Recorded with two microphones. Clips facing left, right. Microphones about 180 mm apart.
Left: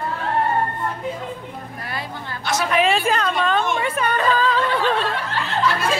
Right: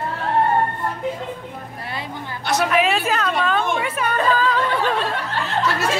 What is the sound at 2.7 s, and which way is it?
Speech, 5° right (ahead or behind).